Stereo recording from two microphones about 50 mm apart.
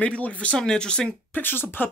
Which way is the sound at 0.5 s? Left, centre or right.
Centre.